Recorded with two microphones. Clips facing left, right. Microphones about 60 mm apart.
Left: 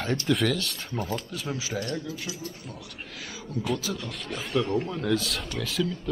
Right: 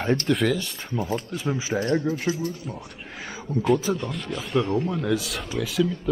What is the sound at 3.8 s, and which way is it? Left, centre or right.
Speech, right.